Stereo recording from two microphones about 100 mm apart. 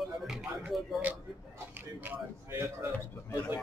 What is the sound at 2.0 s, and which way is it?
Speech, 20° right (ahead or behind).